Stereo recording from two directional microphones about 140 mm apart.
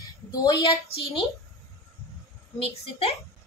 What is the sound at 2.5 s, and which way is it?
Speech, 45° left (ahead or behind).